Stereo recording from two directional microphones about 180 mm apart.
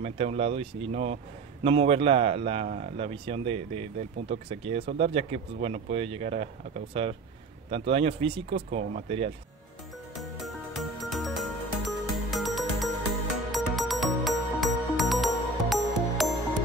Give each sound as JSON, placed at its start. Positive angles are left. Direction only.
{"t": 0.0, "sound": "speech", "side_deg": -35}
{"t": 10.1, "sound": "music", "side_deg": 0}